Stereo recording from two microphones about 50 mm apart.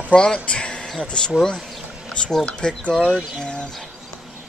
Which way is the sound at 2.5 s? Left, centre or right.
Left.